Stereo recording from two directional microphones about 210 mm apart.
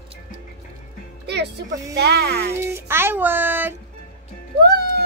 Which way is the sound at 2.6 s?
10° right (ahead or behind).